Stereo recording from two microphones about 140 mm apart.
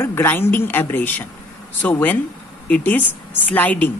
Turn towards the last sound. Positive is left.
turn(degrees=10)  # may be behind; listen again after turning